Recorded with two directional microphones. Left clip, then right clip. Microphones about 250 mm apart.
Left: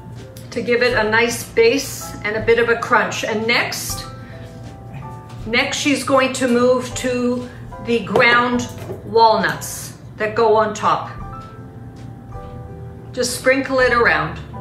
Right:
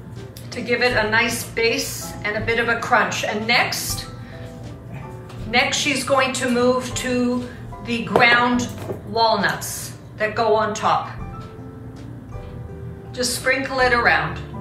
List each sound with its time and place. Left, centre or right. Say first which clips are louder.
0.6 s a woman's voice: left 3 dB; centre
5.5 s a woman's voice: left 1 dB; centre
13.1 s a woman's voice: left 4 dB; centre